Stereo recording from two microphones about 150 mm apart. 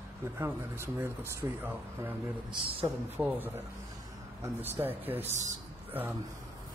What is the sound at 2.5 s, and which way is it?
Speech, 35° right (ahead or behind).